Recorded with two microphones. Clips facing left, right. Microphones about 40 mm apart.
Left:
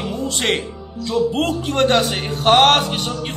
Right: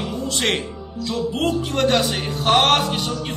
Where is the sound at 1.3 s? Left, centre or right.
Left.